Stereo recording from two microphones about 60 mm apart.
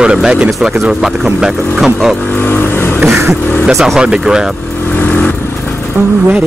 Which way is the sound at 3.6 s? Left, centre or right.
Centre.